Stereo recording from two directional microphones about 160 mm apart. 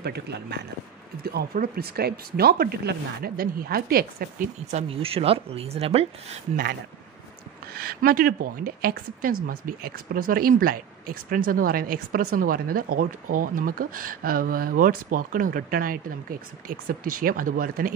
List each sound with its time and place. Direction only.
0.0 s a man's voice: 90° right
1.2 s speech: 80° right
4.6 s speech: 40° right (ahead or behind)
6.5 s a woman's voice: 75° right (ahead or behind)